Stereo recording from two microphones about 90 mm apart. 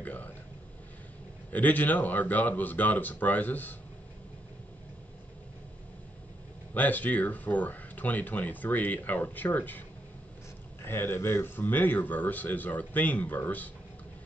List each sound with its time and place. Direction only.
0.0 s a sound: 20° left (ahead or behind)
1.5 s speech: 20° left (ahead or behind)
6.7 s speech: 20° left (ahead or behind)